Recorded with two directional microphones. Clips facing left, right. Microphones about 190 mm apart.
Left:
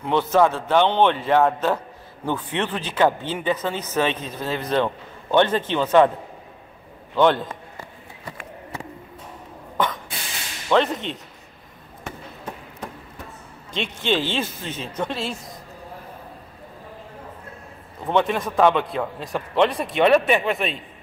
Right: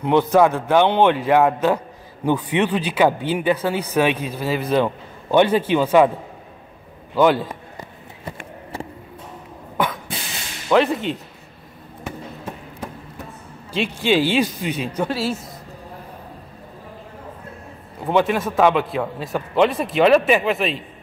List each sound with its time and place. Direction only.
0.0 s speech: 15° right (ahead or behind)
7.2 s speech: 5° right (ahead or behind)
9.8 s spray: 10° right (ahead or behind)
10.7 s a man's voice: 5° right (ahead or behind)
14.0 s speech: 10° right (ahead or behind)
18.0 s a man's voice: 5° right (ahead or behind)